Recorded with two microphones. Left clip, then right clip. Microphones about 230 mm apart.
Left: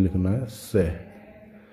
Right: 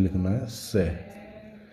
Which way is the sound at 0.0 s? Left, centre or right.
Centre.